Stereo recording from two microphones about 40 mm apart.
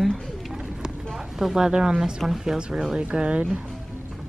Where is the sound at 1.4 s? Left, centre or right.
Centre.